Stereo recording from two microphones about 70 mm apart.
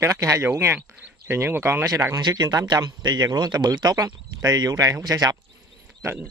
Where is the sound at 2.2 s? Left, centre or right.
Right.